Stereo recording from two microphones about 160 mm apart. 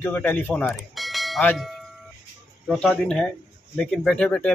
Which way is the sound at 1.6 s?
Centre (ahead or behind).